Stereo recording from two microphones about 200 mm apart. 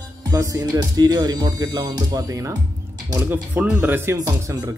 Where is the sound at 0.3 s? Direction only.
20° right (ahead or behind).